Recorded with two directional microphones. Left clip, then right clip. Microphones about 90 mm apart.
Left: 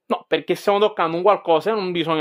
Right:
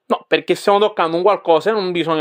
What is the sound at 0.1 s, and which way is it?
Speech, 5° right (ahead or behind).